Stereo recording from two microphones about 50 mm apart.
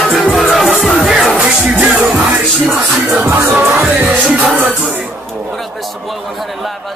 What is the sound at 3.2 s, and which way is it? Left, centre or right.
Music, right.